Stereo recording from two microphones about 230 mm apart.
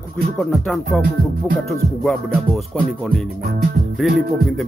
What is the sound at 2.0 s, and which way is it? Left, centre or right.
Speech, centre.